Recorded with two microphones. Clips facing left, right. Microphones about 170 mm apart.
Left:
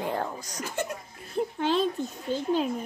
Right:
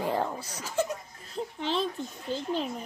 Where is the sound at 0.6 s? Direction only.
55° left (ahead or behind).